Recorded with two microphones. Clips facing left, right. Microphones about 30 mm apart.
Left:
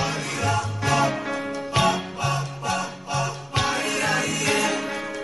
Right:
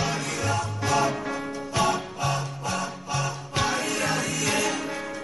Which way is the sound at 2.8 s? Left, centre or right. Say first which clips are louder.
Left 2 dB; centre.